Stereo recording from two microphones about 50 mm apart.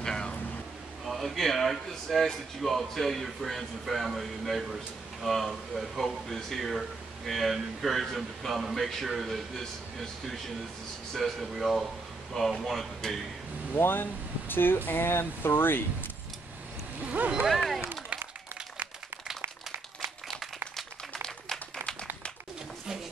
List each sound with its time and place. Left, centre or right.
0.0 s a sound: centre
1.0 s speech: centre
13.7 s speech: left
17.0 s speech: right
17.5 s speech: centre
20.7 s a sound: centre